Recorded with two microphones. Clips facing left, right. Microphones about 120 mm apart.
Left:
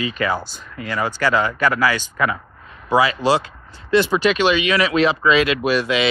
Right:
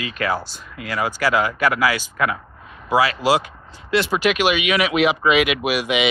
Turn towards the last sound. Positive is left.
turn(degrees=-15)  # may be behind; listen again after turning